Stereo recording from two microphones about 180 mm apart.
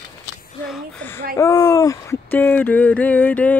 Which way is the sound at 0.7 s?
10° left (ahead or behind).